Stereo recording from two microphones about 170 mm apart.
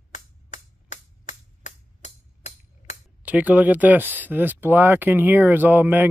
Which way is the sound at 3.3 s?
10° right (ahead or behind).